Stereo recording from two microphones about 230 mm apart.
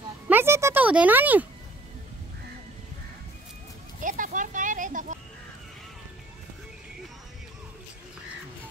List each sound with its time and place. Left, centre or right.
0.3 s music: centre
4.0 s music: right